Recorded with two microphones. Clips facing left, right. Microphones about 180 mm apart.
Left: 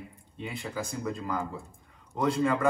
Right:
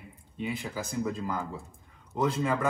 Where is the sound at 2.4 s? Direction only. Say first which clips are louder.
Left 2 dB; centre (ahead or behind).